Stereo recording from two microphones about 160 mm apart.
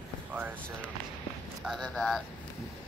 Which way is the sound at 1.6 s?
5° left (ahead or behind).